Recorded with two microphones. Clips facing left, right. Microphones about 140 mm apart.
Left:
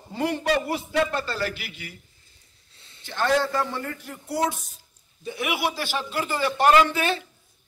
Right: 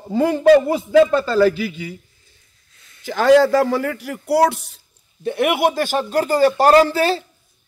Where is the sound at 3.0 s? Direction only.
90° right; by 4.8 s 70° right (ahead or behind).